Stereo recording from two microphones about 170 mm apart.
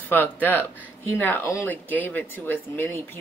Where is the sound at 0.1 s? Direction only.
10° left (ahead or behind).